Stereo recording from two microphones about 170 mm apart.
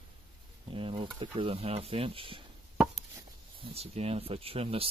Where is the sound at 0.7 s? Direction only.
30° right (ahead or behind).